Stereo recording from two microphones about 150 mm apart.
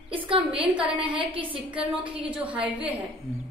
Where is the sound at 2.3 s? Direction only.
10° right (ahead or behind).